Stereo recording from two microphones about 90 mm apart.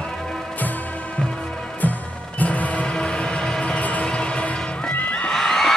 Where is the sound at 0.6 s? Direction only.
20° left (ahead or behind).